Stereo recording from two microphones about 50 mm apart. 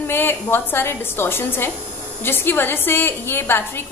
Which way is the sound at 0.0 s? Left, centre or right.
Left.